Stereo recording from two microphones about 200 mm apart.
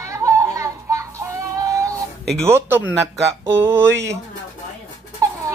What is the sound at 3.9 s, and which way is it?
Speech, 60° right (ahead or behind).